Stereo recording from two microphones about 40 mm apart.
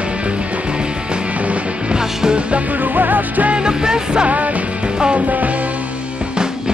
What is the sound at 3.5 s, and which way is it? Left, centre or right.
Music, centre.